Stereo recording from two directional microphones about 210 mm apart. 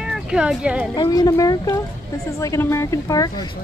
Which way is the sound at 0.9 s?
20° left (ahead or behind).